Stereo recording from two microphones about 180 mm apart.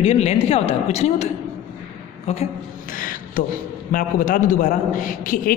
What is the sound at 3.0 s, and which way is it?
A man's voice, 50° left (ahead or behind).